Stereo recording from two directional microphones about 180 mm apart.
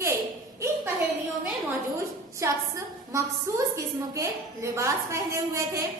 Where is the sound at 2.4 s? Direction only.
15° right (ahead or behind).